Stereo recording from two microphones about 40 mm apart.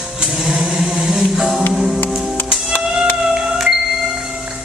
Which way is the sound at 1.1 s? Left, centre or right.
Centre.